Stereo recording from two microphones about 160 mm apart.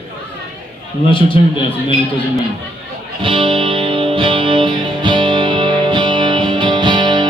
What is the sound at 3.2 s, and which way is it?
Music, 30° right (ahead or behind).